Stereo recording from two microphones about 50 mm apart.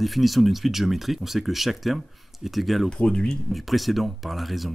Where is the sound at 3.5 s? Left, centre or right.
Centre.